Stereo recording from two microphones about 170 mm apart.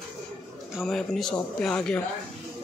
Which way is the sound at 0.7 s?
Centre (ahead or behind).